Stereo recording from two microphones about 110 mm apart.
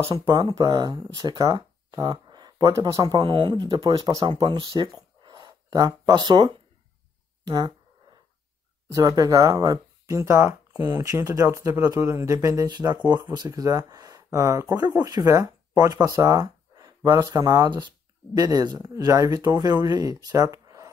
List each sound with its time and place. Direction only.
0.3 s speech: 40° right (ahead or behind)
8.9 s speech: 35° right (ahead or behind)
12.6 s speech: 40° right (ahead or behind)